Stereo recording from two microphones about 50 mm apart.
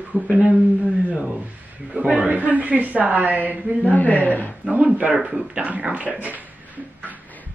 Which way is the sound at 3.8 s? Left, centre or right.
Left.